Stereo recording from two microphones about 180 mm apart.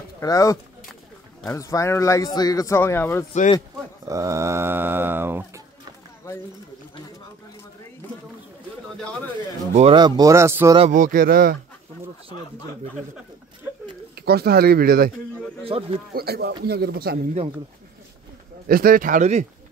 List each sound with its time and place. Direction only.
0.2 s speech: 20° left (ahead or behind)
4.1 s speech: 15° right (ahead or behind)
9.8 s speech: 30° right (ahead or behind)
10.9 s speech: 50° right (ahead or behind)
14.1 s speech: 60° right (ahead or behind)
15.6 s speech: 30° right (ahead or behind)
16.1 s speech: 60° right (ahead or behind)
18.7 s speech: 55° right (ahead or behind)